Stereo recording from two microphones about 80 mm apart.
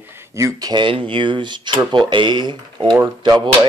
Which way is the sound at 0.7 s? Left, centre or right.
Right.